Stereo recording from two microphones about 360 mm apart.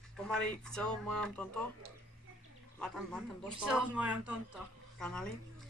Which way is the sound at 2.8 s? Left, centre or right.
Centre.